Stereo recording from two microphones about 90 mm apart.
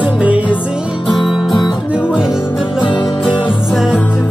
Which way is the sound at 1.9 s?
10° right (ahead or behind).